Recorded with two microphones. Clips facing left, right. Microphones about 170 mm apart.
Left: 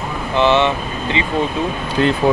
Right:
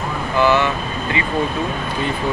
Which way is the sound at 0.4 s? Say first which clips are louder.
Left 2 dB; 25° left (ahead or behind).